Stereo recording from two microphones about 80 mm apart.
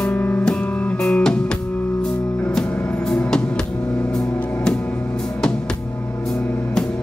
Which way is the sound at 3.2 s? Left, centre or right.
Centre.